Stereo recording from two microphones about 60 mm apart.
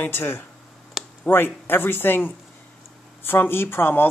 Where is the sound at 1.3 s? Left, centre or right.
Left.